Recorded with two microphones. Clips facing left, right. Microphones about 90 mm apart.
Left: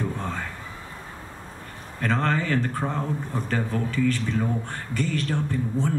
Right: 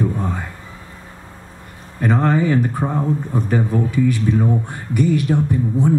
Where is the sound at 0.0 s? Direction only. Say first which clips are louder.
Right 7 dB; 15° right (ahead or behind).